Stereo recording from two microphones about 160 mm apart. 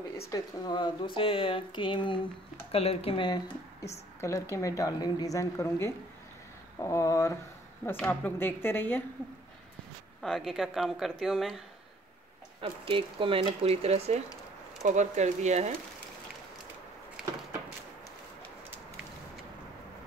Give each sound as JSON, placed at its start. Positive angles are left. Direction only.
{"t": 0.3, "sound": "speech", "side_deg": 25}
{"t": 4.2, "sound": "a woman's voice", "side_deg": 15}
{"t": 10.2, "sound": "speech", "side_deg": 0}
{"t": 12.6, "sound": "speech", "side_deg": -35}